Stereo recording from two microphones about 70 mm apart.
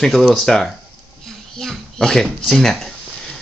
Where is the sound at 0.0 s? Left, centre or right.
Centre.